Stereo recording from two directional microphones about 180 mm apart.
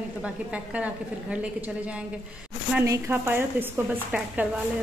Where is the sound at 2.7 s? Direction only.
15° right (ahead or behind).